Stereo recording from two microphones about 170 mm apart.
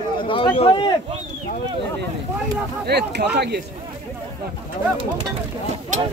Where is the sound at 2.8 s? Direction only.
75° right (ahead or behind).